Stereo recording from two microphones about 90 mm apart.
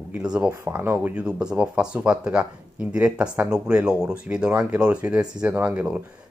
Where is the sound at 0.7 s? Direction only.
25° right (ahead or behind).